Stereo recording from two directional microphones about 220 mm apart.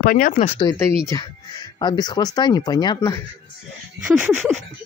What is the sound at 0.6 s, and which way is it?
Speech, 15° left (ahead or behind).